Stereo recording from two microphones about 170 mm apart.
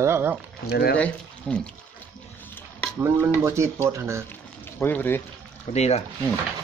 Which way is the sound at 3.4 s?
15° right (ahead or behind).